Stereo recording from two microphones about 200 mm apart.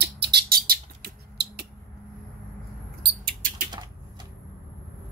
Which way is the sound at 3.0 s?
50° right (ahead or behind).